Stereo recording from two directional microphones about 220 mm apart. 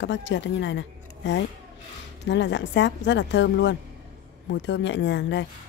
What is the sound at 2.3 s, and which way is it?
A woman's voice, 55° left (ahead or behind).